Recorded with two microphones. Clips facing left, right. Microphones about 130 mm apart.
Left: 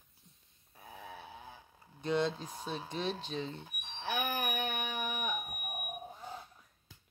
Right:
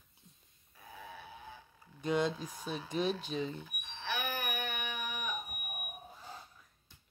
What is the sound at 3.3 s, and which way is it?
Speech, 10° right (ahead or behind).